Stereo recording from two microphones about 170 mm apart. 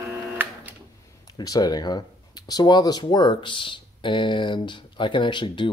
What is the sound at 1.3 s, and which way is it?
Speech, 25° left (ahead or behind).